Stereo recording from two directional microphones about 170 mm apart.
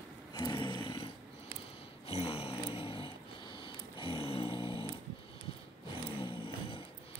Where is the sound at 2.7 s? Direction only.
30° left (ahead or behind).